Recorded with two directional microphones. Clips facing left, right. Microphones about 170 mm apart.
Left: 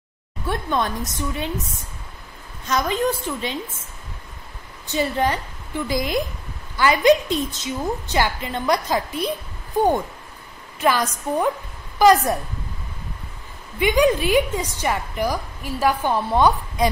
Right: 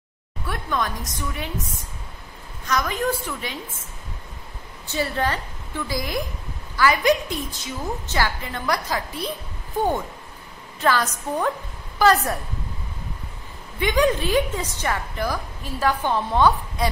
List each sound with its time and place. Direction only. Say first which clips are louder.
0.5 s a woman's voice: left 3 dB; 25° left (ahead or behind)
2.6 s a woman's voice: left 3 dB; 25° left (ahead or behind)
4.8 s a woman's voice: left 3 dB; 20° left (ahead or behind)
10.8 s a woman's voice: left 1 dB; 10° left (ahead or behind)
13.7 s a woman's voice: left 3 dB; 10° left (ahead or behind)